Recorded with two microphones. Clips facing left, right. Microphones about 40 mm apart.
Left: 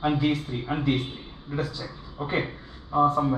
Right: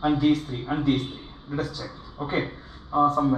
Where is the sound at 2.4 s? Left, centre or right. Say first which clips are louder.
Right 1 dB; centre.